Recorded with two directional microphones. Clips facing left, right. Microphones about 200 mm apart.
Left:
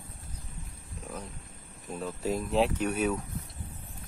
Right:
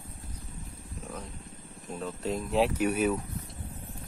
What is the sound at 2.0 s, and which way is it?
Speech, 5° left (ahead or behind).